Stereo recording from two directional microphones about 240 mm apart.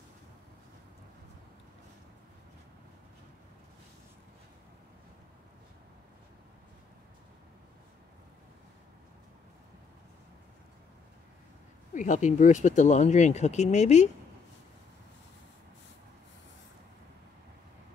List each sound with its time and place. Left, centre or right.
11.9 s speech: left